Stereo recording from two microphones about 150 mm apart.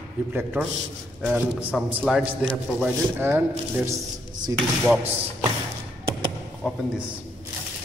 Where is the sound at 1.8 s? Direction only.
10° right (ahead or behind).